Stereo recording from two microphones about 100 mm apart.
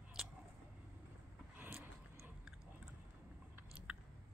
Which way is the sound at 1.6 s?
15° right (ahead or behind).